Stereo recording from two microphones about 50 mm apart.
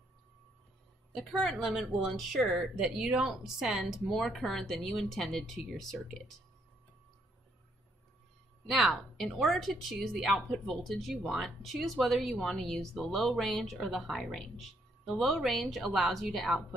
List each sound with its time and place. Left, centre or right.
1.1 s a woman's voice: centre
1.7 s speech: centre
2.7 s speech: centre
8.6 s speech: centre